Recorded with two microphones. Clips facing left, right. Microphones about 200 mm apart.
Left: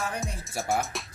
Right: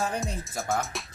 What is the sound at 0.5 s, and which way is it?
Music, 15° left (ahead or behind).